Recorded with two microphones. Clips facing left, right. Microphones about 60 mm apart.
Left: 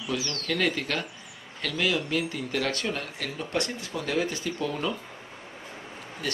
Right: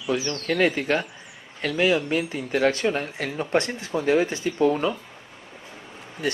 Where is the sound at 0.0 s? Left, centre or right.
Right.